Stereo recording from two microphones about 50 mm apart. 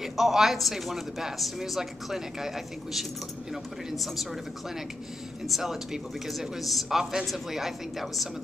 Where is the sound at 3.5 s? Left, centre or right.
Centre.